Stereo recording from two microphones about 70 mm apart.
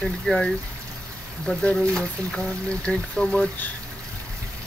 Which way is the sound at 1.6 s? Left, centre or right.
Centre.